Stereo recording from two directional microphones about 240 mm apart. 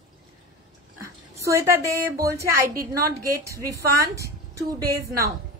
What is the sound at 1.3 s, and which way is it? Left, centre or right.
A woman's voice, centre.